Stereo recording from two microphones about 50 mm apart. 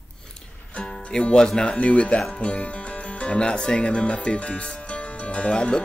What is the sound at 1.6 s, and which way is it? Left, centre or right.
Speech, left.